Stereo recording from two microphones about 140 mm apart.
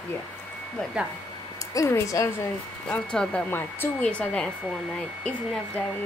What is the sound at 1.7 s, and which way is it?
Speech, 20° left (ahead or behind).